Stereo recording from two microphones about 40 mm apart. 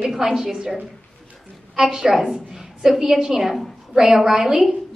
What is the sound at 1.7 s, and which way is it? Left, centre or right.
A woman's voice, centre.